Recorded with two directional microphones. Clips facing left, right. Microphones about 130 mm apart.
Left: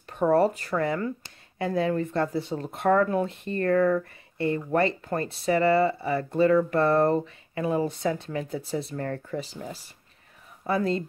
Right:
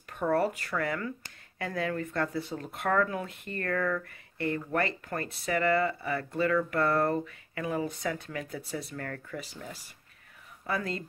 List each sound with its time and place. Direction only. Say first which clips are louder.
0.1 s speech: left 6 dB; 25° left (ahead or behind)